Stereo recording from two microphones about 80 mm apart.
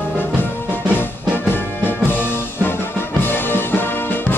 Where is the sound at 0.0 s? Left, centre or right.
Left.